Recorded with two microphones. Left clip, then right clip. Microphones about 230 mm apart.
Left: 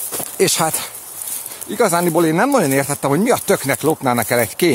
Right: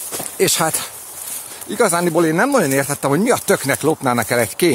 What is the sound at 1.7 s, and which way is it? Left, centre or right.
Speech, centre.